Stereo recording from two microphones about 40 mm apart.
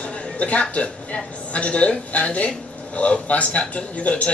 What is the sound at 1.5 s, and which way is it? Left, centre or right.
Speech, left.